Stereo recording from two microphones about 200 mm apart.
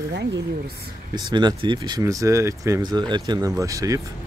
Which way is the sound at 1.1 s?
20° right (ahead or behind).